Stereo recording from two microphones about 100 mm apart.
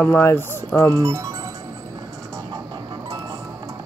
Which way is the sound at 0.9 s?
35° right (ahead or behind).